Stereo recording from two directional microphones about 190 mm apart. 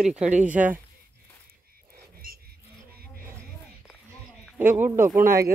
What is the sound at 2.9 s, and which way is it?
Music, 55° right (ahead or behind).